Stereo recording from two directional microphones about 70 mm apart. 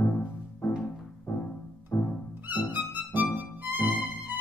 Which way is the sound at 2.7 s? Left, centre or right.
Right.